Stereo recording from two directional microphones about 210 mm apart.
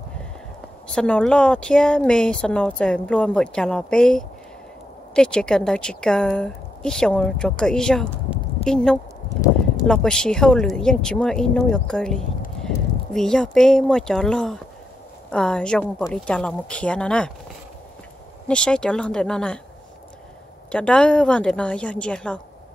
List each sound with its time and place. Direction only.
0.9 s speech: 5° left (ahead or behind)
18.5 s speech: 5° left (ahead or behind)
20.7 s speech: 5° left (ahead or behind)